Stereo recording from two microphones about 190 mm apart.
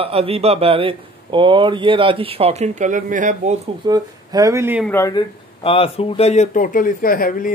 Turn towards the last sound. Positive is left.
turn(degrees=45)  # may be behind; listen again after turning